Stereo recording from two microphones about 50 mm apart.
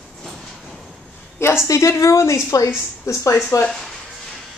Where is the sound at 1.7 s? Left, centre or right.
Left.